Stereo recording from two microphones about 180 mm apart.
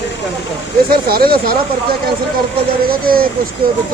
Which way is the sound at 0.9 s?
55° right (ahead or behind).